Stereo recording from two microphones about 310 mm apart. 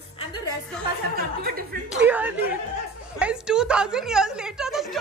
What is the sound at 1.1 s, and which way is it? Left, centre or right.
Speech, right.